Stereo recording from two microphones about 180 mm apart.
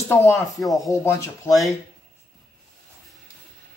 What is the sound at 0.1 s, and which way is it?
Speech, 15° left (ahead or behind).